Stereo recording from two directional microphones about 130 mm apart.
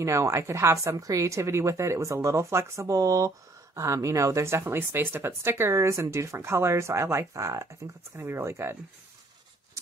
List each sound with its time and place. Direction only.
0.0 s speech: 25° right (ahead or behind)